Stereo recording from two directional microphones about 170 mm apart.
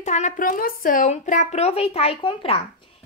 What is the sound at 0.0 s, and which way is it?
A woman's voice, 45° left (ahead or behind).